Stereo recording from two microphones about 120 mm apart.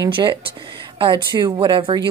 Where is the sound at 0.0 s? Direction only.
40° right (ahead or behind).